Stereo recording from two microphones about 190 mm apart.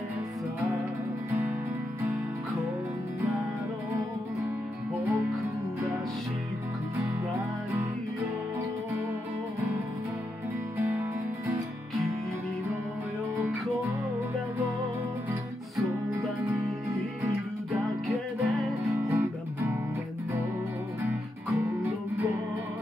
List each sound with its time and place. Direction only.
4.9 s music: 10° right (ahead or behind)
17.8 s music: centre (ahead or behind)
19.0 s music: 15° right (ahead or behind)